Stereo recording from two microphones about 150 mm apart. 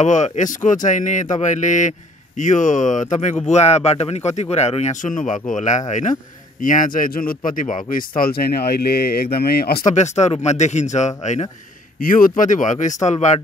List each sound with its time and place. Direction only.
0.0 s a man's voice: 50° left (ahead or behind)
8.2 s speech: 90° left
9.8 s speech: 50° left (ahead or behind)
12.0 s a man's voice: 65° left (ahead or behind); by 13.4 s 50° left (ahead or behind)